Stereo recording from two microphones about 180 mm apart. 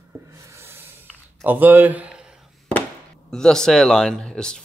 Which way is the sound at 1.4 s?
10° right (ahead or behind).